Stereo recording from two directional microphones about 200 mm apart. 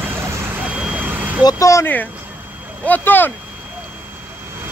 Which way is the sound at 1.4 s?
20° left (ahead or behind).